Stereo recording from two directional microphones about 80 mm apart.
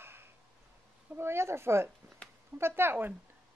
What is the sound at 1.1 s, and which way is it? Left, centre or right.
Speech, right.